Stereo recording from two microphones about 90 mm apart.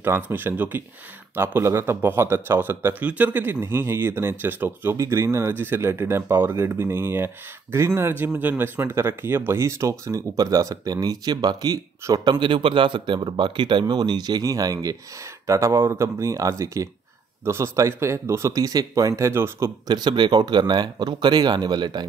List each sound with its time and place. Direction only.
0.0 s speech: 25° right (ahead or behind); by 12.2 s 45° right (ahead or behind)
12.3 s a man's voice: 65° right (ahead or behind); by 19.7 s 30° right (ahead or behind)
19.9 s speech: 55° right (ahead or behind)